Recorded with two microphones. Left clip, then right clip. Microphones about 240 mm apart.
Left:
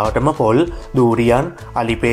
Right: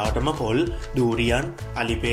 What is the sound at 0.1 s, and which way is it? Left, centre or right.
Speech, centre.